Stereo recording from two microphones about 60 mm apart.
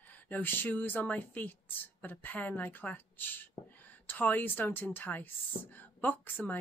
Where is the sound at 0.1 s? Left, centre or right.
Left.